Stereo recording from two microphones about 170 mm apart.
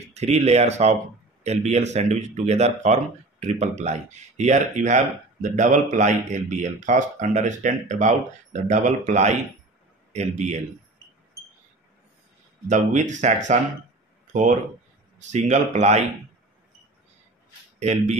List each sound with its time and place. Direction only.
0.1 s speech: 40° right (ahead or behind)
12.6 s speech: 45° right (ahead or behind)
17.7 s speech: 40° right (ahead or behind)